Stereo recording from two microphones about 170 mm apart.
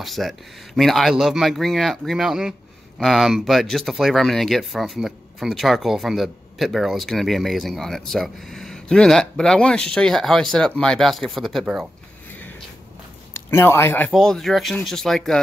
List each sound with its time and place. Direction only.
0.0 s speech: centre (ahead or behind)
12.3 s a sound: 10° left (ahead or behind)
13.3 s speech: 15° left (ahead or behind)
14.1 s speech: centre (ahead or behind)